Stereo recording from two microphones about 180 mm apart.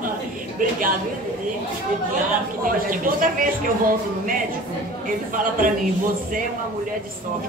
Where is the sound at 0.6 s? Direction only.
50° right (ahead or behind).